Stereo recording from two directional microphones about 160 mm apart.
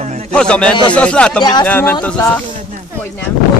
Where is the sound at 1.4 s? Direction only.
25° left (ahead or behind).